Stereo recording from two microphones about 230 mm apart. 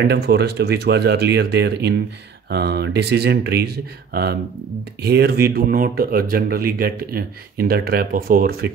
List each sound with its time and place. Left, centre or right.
0.0 s speech: right